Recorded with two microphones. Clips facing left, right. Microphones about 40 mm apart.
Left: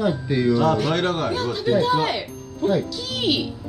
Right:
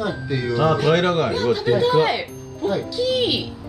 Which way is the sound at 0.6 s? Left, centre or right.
Centre.